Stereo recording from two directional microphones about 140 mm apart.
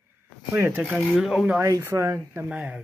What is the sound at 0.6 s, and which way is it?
Speech, 15° right (ahead or behind).